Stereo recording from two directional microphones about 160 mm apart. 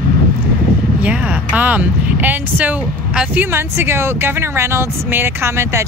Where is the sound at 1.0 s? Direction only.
5° right (ahead or behind).